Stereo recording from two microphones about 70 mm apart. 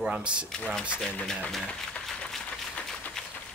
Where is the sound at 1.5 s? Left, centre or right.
Centre.